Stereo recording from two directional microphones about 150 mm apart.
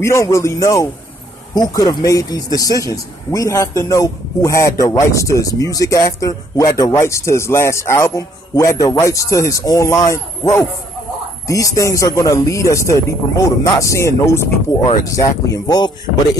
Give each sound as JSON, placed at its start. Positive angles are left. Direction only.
{"t": 0.0, "sound": "speech", "side_deg": 20}